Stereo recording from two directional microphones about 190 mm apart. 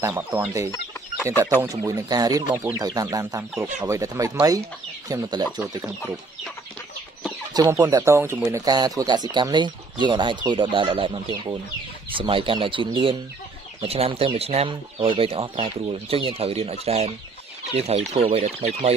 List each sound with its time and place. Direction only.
0.0 s speech: 10° right (ahead or behind)
1.6 s speech: 15° right (ahead or behind)
7.5 s speech: 15° right (ahead or behind); by 18.9 s 35° right (ahead or behind)